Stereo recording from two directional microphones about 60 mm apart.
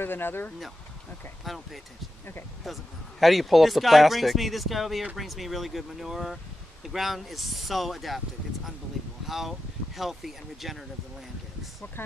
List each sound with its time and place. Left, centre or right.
0.0 s speech: left
1.4 s speech: centre
9.2 s speech: centre